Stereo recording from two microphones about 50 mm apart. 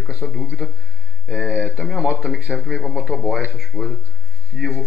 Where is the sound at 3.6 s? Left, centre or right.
Centre.